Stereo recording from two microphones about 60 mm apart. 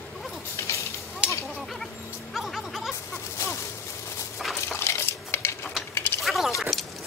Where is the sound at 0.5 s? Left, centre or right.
Left.